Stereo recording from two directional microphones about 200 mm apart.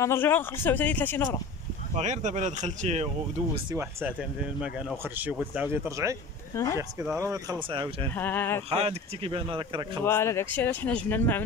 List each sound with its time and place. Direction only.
0.0 s speech: 10° left (ahead or behind)
2.0 s speech: 35° right (ahead or behind)
3.7 s speech: 5° right (ahead or behind)
6.5 s speech: 15° left (ahead or behind)
6.8 s speech: 15° right (ahead or behind)
8.2 s speech: 10° left (ahead or behind)
8.6 s speech: 30° right (ahead or behind)
10.0 s speech: 15° left (ahead or behind)